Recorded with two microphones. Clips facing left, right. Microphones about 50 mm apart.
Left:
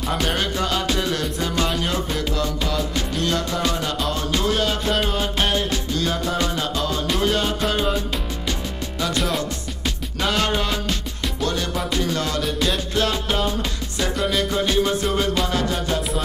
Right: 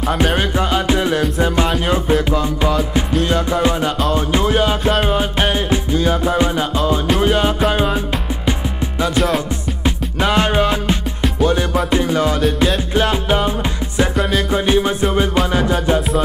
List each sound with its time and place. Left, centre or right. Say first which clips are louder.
0.4 s music: right 5 dB; right
3.3 s music: right 6 dB; right
9.1 s music: right 7 dB; centre
9.8 s music: right 6 dB; right
14.5 s music: right 5 dB; right